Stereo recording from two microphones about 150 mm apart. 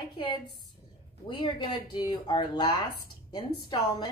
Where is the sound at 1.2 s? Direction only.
30° left (ahead or behind).